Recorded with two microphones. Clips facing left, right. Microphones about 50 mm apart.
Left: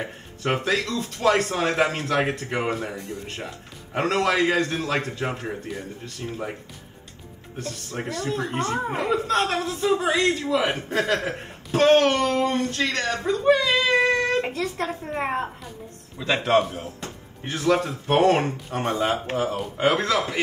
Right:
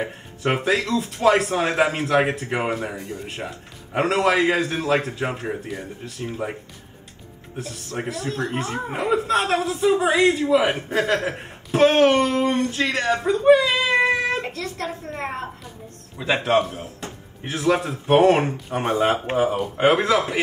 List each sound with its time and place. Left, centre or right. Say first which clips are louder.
0.0 s speech: right 4 dB; centre
7.5 s speech: right 2 dB; centre
12.9 s a sound: right 4 dB; centre
14.5 s a woman's voice: left 2 dB; centre
16.2 s speech: right 2 dB; centre
16.4 s speech: left 1 dB; centre
19.1 s speech: right 4 dB; right